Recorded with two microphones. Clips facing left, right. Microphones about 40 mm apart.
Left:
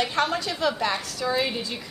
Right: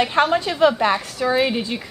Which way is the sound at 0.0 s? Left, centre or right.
Right.